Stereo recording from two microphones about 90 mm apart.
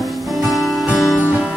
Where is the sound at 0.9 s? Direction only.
10° right (ahead or behind).